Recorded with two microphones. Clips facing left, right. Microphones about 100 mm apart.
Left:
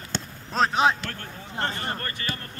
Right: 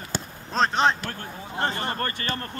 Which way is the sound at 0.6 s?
5° left (ahead or behind).